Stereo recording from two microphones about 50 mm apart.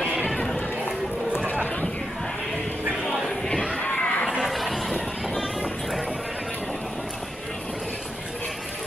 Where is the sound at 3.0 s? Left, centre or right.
Centre.